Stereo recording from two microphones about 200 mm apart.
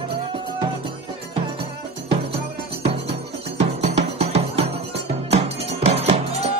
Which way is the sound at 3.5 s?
30° right (ahead or behind).